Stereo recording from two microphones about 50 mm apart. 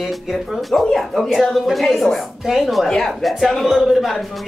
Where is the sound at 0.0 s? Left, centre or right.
Centre.